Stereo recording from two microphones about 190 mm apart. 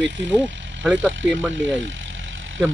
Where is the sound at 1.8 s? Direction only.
80° right.